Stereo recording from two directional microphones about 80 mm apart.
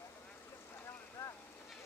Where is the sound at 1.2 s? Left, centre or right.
Left.